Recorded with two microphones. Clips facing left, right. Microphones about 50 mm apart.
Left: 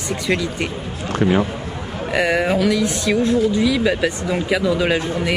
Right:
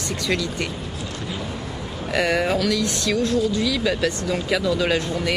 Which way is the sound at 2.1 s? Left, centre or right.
Centre.